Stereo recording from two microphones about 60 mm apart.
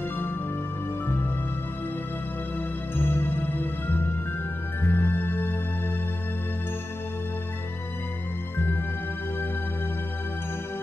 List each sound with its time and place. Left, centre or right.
3.0 s music: left